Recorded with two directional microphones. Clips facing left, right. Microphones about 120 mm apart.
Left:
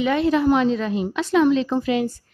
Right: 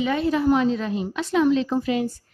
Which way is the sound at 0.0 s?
80° left.